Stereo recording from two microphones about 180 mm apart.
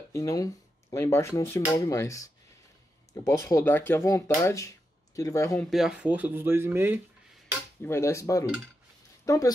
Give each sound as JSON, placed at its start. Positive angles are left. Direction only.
{"t": 0.1, "sound": "speech", "side_deg": 15}
{"t": 5.7, "sound": "speech", "side_deg": -5}
{"t": 7.8, "sound": "speech", "side_deg": 15}